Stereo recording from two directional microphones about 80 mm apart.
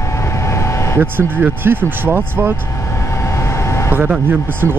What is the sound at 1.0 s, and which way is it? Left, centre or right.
Speech, right.